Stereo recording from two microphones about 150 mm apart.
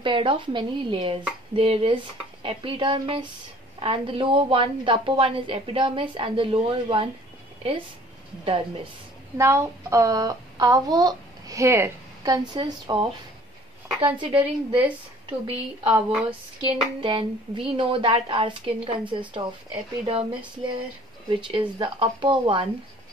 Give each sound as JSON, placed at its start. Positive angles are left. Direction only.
{"t": 0.0, "sound": "a woman's voice", "side_deg": -35}
{"t": 9.4, "sound": "speech", "side_deg": -20}
{"t": 14.2, "sound": "a woman's voice", "side_deg": -35}
{"t": 16.1, "sound": "a woman's voice", "side_deg": -5}
{"t": 16.6, "sound": "a woman's voice", "side_deg": -35}